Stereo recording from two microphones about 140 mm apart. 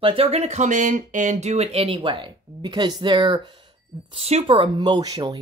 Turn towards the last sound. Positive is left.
turn(degrees=-25)  # may be behind; listen again after turning